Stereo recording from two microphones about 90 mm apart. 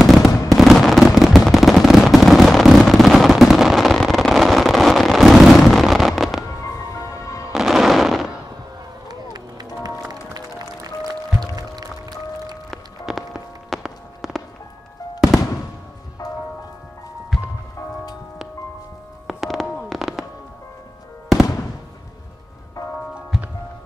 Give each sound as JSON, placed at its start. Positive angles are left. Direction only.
{"t": 0.0, "sound": "fireworks", "side_deg": 0}
{"t": 6.9, "sound": "music", "side_deg": 35}
{"t": 7.5, "sound": "music", "side_deg": -5}
{"t": 9.1, "sound": "run", "side_deg": -45}
{"t": 9.8, "sound": "music", "side_deg": -40}
{"t": 12.7, "sound": "music", "side_deg": 0}
{"t": 15.1, "sound": "fireworks", "side_deg": 0}
{"t": 17.3, "sound": "music", "side_deg": 0}
{"t": 19.2, "sound": "music", "side_deg": 0}
{"t": 23.3, "sound": "music", "side_deg": -5}